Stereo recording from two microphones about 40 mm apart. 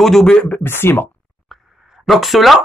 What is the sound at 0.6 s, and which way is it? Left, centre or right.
Speech, left.